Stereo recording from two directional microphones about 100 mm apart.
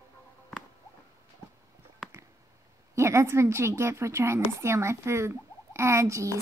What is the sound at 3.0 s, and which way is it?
A woman's voice, 30° right (ahead or behind).